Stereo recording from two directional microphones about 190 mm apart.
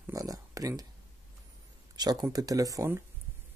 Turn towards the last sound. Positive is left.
turn(degrees=-15)  # may be behind; listen again after turning